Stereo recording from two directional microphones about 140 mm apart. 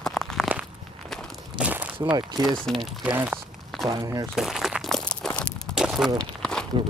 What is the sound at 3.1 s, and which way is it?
Speech, 10° right (ahead or behind).